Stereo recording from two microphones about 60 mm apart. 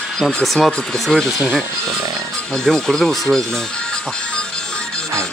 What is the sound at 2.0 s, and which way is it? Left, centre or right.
Speech, right.